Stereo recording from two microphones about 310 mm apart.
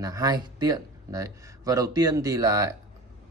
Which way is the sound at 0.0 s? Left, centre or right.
Centre.